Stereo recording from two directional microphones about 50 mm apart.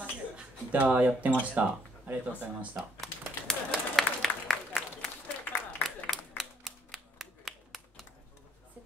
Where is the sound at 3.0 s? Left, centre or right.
Centre.